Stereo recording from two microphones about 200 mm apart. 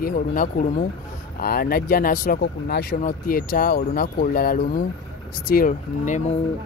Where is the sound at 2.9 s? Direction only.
40° left (ahead or behind).